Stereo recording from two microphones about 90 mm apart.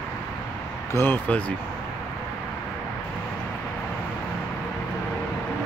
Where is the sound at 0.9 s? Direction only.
20° left (ahead or behind).